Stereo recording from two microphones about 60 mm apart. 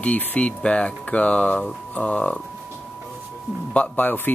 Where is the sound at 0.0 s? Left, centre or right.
Left.